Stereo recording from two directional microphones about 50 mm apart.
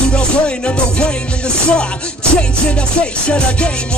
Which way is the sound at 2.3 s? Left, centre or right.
Left.